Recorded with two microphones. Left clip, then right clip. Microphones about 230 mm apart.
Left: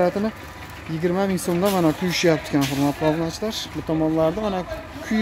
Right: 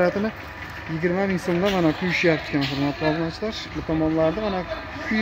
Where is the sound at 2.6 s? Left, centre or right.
Left.